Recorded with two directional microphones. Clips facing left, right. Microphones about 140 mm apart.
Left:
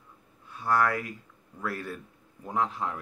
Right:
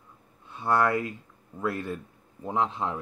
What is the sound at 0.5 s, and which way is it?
Speech, 25° right (ahead or behind).